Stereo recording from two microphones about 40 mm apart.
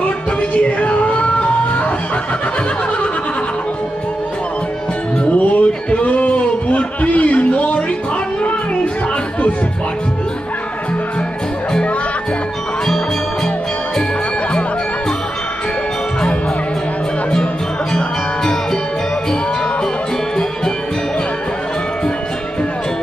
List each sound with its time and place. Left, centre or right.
0.4 s music: left
5.2 s music: left
17.9 s music: centre